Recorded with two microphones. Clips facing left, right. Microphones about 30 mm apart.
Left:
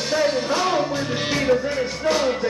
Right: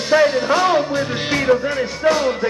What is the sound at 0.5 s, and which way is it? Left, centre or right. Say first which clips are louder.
Music: right 5 dB; centre.